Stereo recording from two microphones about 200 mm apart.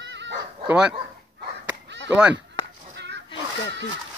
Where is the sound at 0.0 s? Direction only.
60° right (ahead or behind).